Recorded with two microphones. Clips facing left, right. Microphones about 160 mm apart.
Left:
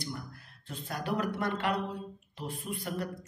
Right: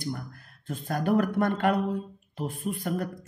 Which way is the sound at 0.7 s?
50° right (ahead or behind).